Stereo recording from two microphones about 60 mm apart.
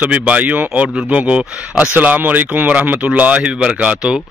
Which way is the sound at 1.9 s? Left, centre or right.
Right.